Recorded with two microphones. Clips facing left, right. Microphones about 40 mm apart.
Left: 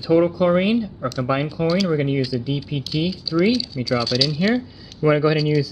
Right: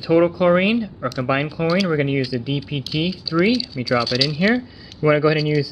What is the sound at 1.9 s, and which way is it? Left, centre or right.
Speech, right.